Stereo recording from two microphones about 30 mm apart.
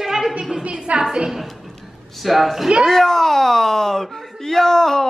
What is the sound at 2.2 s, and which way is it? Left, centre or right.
Speech, centre.